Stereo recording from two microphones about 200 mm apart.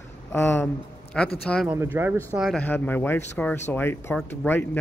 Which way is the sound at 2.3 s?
Centre (ahead or behind).